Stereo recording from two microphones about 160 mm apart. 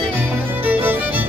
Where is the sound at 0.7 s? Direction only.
10° right (ahead or behind).